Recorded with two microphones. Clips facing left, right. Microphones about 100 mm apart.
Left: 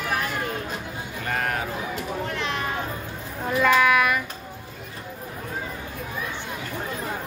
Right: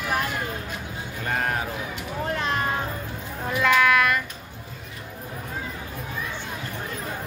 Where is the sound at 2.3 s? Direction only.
40° right (ahead or behind).